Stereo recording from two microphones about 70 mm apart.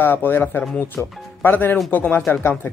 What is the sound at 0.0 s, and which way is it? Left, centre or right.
Speech, left.